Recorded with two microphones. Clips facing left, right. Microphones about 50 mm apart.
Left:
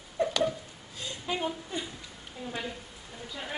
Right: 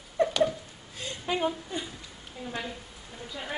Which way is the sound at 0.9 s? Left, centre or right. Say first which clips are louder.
Right 3 dB; right.